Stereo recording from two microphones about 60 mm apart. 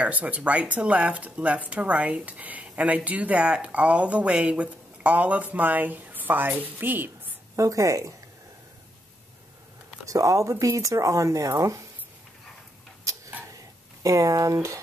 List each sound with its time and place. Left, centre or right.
0.0 s a woman's voice: right
7.5 s speech: right
10.0 s speech: right
14.0 s speech: right